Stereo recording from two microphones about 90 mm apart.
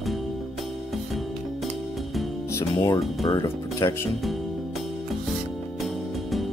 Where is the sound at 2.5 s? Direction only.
45° left (ahead or behind).